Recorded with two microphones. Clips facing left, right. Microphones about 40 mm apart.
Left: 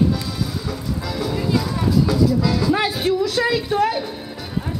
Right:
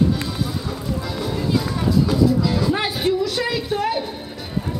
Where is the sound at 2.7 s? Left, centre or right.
Centre.